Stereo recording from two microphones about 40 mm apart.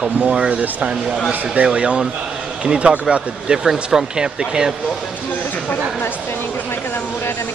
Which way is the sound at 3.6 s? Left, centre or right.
Centre.